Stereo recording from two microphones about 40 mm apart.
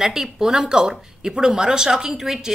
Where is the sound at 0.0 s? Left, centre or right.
Centre.